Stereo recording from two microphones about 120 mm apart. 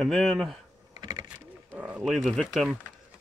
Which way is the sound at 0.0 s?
5° left (ahead or behind).